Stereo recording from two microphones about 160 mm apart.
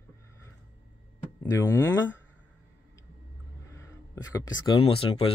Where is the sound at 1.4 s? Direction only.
20° left (ahead or behind).